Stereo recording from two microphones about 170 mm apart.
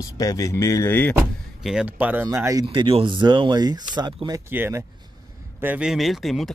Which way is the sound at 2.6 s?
30° right (ahead or behind).